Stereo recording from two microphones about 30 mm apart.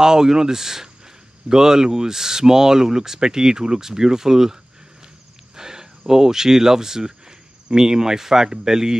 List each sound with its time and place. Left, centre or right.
0.0 s speech: right
5.6 s speech: centre